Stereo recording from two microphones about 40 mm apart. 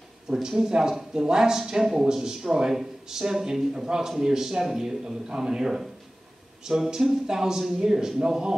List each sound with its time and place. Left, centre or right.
0.3 s a man's voice: centre